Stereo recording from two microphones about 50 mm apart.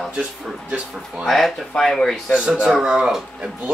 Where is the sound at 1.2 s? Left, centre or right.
Centre.